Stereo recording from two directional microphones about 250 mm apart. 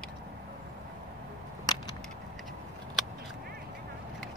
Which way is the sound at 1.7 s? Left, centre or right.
Centre.